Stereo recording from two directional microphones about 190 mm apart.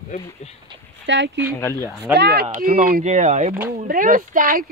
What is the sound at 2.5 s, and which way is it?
Speech, 45° right (ahead or behind).